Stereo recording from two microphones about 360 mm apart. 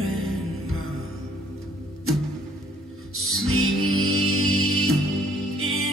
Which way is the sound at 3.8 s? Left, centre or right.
Right.